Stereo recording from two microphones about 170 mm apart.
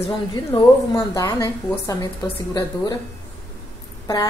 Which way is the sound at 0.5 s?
30° left (ahead or behind).